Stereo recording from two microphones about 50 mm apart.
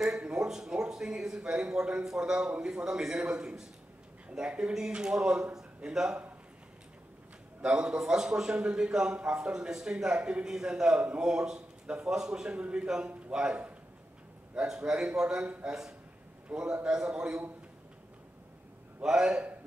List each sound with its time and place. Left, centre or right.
0.2 s a man's voice: centre
7.6 s a man's voice: centre
19.0 s a man's voice: centre